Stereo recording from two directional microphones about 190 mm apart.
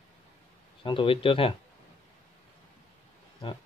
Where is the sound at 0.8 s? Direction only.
25° left (ahead or behind).